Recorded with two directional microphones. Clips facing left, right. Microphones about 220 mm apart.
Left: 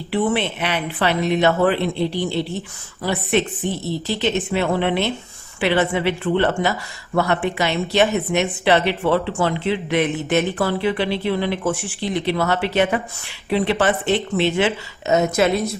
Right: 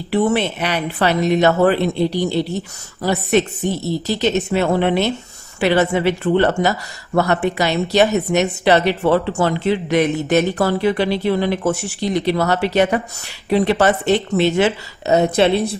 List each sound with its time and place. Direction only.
0.1 s a woman's voice: 40° right (ahead or behind)